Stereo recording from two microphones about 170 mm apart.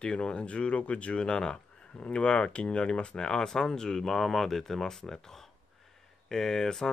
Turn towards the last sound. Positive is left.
turn(degrees=5)  # may be behind; listen again after turning